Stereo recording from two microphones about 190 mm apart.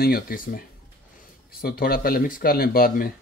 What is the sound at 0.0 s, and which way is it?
Speech, 50° left (ahead or behind).